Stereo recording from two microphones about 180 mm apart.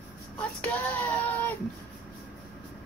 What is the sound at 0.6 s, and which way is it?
Child singing, 10° left (ahead or behind).